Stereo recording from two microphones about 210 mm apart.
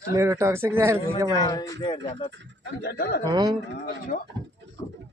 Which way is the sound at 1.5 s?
15° left (ahead or behind).